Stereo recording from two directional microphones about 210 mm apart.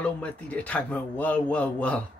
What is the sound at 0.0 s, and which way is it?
Speech, 5° left (ahead or behind).